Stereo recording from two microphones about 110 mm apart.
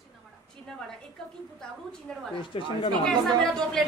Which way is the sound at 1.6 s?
5° left (ahead or behind).